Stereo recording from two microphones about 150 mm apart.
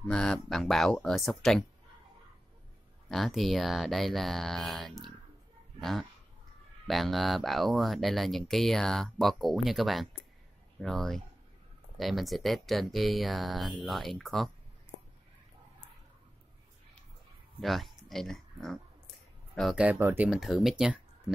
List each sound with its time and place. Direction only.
0.0 s speech: 5° left (ahead or behind)
3.1 s speech: centre (ahead or behind)
17.6 s speech: centre (ahead or behind)
20.2 s speech: centre (ahead or behind)